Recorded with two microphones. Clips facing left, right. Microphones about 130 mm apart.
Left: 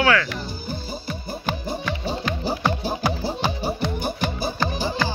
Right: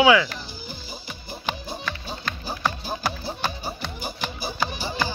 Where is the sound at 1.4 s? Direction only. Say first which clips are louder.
Left 4 dB; 10° left (ahead or behind).